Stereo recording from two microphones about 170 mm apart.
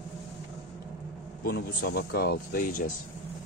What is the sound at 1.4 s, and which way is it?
Speech, 65° left (ahead or behind).